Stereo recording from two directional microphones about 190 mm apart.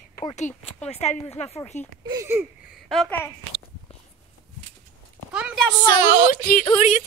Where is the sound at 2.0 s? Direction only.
15° right (ahead or behind).